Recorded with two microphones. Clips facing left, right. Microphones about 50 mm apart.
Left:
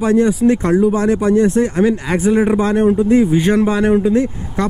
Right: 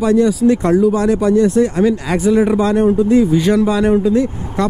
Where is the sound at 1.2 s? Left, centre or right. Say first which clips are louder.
Right 2 dB; left.